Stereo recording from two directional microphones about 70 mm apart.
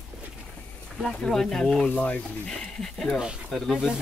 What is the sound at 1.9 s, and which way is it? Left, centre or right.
Speech, left.